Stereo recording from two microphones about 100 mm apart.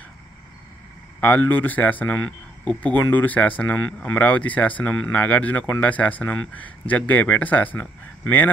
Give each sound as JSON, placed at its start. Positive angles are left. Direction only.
{"t": 1.2, "sound": "speech", "side_deg": 15}